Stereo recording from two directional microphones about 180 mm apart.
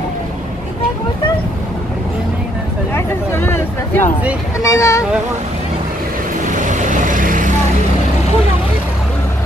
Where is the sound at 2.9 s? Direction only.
15° left (ahead or behind).